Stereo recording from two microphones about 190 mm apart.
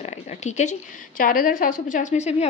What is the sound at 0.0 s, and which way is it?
Speech, 35° left (ahead or behind).